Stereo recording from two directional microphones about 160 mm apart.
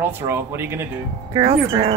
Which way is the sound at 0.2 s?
15° right (ahead or behind).